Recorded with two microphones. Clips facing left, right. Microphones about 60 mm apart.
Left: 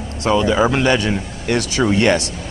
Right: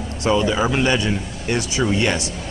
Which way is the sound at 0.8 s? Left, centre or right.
Left.